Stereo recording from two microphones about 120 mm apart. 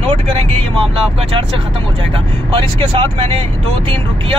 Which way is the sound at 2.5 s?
50° right (ahead or behind).